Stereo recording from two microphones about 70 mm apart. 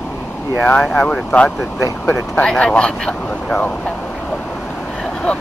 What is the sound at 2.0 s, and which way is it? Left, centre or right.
Speech, left.